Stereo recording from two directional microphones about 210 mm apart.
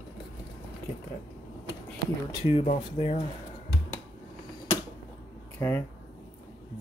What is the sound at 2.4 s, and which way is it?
Speech, 30° left (ahead or behind).